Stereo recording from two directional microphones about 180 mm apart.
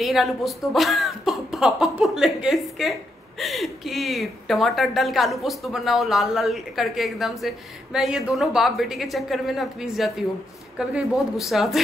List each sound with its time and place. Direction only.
0.0 s speech: centre (ahead or behind)